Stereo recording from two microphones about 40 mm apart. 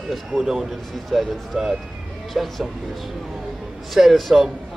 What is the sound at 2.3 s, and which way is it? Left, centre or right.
Speech, centre.